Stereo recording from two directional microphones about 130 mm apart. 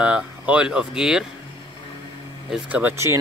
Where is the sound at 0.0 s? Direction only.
10° right (ahead or behind).